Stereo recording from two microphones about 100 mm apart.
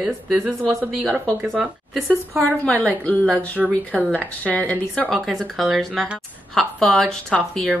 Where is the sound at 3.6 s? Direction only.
15° right (ahead or behind).